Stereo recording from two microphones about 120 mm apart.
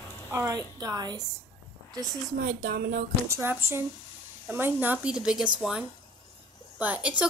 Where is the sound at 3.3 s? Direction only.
20° right (ahead or behind); by 5.5 s 5° right (ahead or behind).